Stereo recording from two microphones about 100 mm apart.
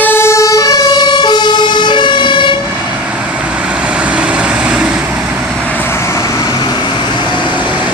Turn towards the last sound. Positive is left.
turn(degrees=-10)  # may be behind; listen again after turning